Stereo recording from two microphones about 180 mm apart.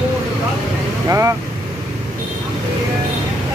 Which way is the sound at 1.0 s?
15° right (ahead or behind).